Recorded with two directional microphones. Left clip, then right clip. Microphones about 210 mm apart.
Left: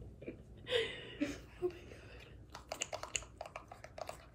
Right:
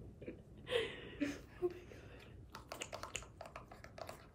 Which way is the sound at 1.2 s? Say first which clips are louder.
Left 1 dB; 15° left (ahead or behind).